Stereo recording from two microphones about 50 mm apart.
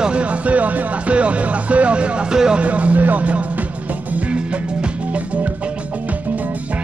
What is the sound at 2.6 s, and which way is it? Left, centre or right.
Speech, right.